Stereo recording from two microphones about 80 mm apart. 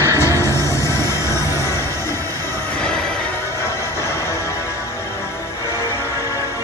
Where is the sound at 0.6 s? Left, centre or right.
Left.